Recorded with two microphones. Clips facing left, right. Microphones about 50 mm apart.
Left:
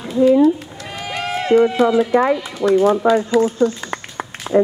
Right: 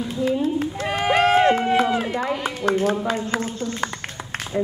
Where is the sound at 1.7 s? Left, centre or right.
Right.